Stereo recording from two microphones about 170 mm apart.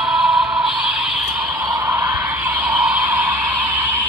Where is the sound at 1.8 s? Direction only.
15° right (ahead or behind).